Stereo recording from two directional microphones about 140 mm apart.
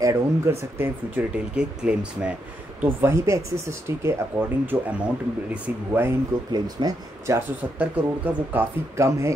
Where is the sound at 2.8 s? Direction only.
15° right (ahead or behind).